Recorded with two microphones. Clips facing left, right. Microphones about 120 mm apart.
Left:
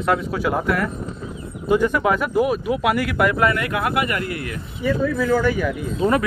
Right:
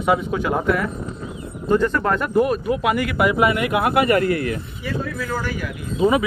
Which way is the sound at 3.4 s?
15° right (ahead or behind).